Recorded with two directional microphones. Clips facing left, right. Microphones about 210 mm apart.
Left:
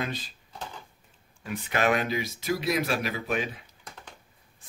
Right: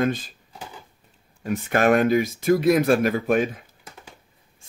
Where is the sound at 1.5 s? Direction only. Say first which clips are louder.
Right 7 dB; 50° right (ahead or behind).